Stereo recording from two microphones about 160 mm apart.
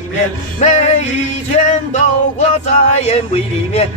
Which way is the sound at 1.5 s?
50° left (ahead or behind).